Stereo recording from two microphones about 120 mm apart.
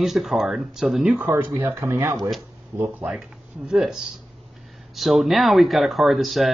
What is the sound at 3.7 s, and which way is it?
Speech, 5° right (ahead or behind).